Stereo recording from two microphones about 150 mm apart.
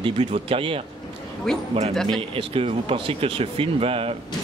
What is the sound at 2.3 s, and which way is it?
Speech, 40° right (ahead or behind).